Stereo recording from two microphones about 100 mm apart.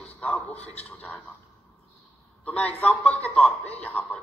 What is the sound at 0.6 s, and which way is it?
Speech, 90° left.